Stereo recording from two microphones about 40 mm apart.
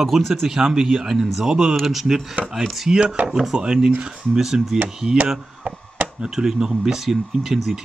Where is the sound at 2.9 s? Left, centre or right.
Right.